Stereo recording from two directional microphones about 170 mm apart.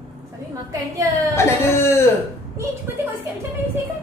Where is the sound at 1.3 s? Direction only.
15° left (ahead or behind).